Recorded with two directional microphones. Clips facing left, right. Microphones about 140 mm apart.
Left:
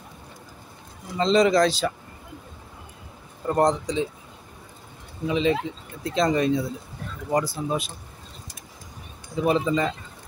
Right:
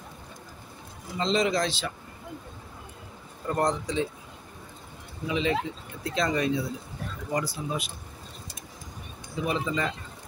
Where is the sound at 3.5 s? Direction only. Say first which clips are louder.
Left 5 dB; 20° left (ahead or behind).